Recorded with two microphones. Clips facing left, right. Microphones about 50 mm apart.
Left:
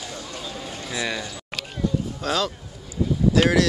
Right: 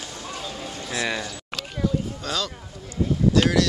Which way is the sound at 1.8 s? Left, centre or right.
Centre.